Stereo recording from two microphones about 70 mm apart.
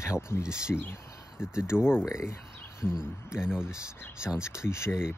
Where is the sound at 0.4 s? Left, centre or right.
Centre.